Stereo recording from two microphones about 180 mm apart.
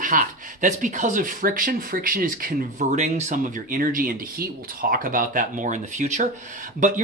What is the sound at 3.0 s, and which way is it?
Speech, 40° right (ahead or behind).